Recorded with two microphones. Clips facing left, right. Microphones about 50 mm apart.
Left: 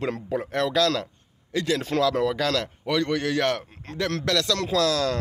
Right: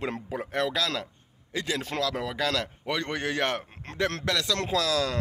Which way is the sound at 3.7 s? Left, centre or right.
Right.